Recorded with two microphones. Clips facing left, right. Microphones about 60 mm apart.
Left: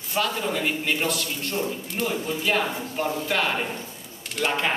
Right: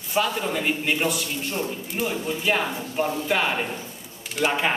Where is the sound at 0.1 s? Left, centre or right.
Centre.